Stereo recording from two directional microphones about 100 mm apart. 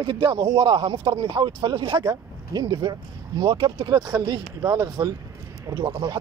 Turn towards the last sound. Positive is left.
turn(degrees=-40)  # may be behind; listen again after turning